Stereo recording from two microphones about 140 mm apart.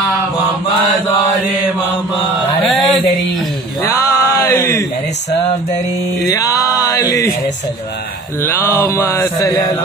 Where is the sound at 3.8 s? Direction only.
20° left (ahead or behind).